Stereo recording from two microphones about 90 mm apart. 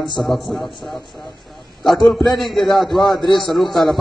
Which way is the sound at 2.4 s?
5° left (ahead or behind).